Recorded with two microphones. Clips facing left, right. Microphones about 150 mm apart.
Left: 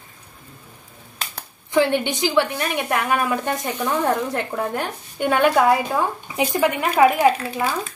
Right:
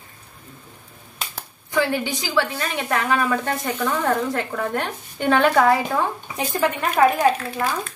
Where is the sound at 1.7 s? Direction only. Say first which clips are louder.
Left 3 dB; 20° left (ahead or behind).